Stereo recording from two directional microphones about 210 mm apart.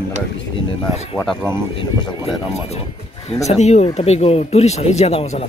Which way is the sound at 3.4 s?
30° left (ahead or behind).